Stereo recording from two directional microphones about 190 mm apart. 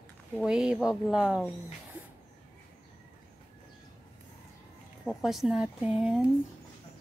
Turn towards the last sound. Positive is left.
turn(degrees=-5)  # may be behind; listen again after turning